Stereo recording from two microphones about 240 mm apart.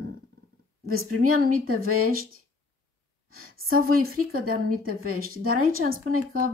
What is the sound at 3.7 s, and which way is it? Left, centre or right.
Speech, right.